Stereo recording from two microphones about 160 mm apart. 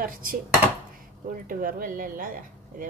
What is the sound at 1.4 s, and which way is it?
Speech, 60° right (ahead or behind).